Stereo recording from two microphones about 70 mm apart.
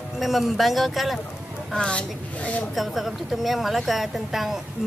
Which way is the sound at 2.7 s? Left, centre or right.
Centre.